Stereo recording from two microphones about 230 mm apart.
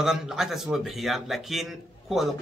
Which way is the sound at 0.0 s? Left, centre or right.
Centre.